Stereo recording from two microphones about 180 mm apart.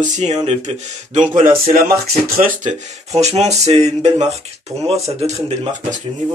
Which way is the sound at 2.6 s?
35° right (ahead or behind).